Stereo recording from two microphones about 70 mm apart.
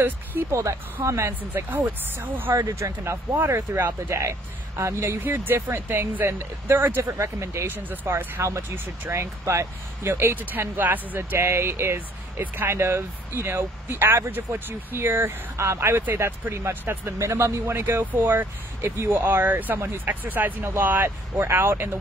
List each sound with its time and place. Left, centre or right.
0.0 s speech: right
0.5 s speech: right
1.9 s speech: right
2.5 s speech: right
5.2 s speech: right
7.6 s speech: right
8.4 s speech: right
11.1 s speech: right